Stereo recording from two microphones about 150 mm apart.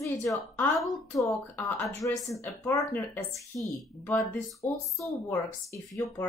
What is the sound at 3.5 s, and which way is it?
A woman's voice, 10° left (ahead or behind).